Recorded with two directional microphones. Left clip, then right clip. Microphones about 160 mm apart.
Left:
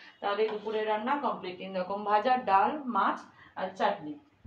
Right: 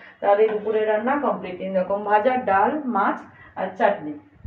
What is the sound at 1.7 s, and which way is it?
A woman's voice, 10° left (ahead or behind).